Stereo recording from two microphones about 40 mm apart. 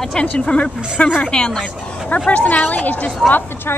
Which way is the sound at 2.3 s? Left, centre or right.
Left.